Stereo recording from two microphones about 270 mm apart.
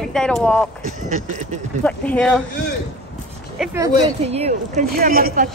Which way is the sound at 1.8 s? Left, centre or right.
Centre.